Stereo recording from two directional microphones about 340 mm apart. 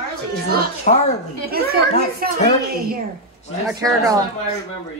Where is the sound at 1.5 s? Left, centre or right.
Right.